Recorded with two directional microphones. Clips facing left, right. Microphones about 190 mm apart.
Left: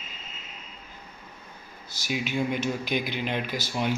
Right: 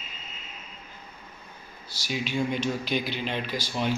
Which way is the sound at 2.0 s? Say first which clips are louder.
Even; 15° left (ahead or behind).